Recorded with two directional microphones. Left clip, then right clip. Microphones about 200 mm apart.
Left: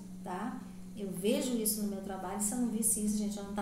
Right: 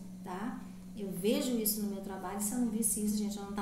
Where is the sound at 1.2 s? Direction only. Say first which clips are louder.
Even; centre (ahead or behind).